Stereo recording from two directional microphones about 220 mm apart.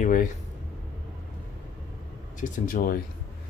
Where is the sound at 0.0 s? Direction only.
35° left (ahead or behind).